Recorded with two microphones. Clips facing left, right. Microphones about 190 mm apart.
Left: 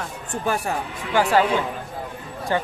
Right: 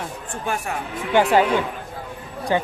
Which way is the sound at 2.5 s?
15° right (ahead or behind).